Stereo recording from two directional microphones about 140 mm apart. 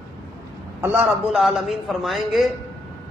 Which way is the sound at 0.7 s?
10° right (ahead or behind).